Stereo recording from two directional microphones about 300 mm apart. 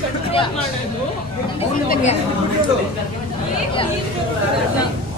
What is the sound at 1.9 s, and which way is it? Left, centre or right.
Speech, left.